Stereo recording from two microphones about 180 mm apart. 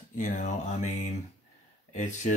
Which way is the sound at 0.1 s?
45° left (ahead or behind).